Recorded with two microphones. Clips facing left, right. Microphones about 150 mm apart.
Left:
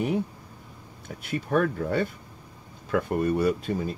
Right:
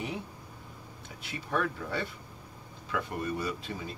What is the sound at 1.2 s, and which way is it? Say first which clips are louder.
Speech: left 8 dB; 50° left (ahead or behind).